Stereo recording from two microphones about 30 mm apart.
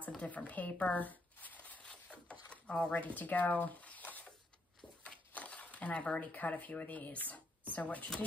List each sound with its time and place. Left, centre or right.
0.2 s speech: left
0.9 s shuffling cards: left
1.6 s zipper: left
2.0 s a sound: left
2.9 s speech: left
5.3 s a sound: left
6.1 s speech: left